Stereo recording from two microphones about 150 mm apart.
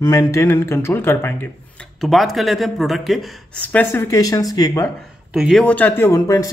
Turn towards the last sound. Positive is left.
turn(degrees=20)  # may be behind; listen again after turning